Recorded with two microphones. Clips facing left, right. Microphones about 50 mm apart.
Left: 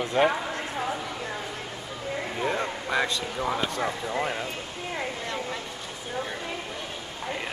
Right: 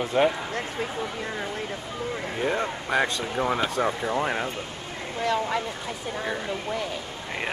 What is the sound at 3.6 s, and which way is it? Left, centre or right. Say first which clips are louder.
Speech: right 3 dB; right.